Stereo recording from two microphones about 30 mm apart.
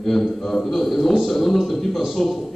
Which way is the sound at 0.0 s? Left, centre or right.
Centre.